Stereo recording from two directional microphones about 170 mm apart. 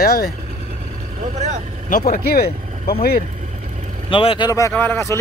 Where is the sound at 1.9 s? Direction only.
50° left (ahead or behind).